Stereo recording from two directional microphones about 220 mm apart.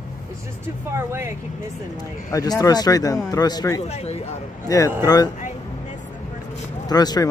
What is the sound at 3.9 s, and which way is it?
Speech, 30° left (ahead or behind).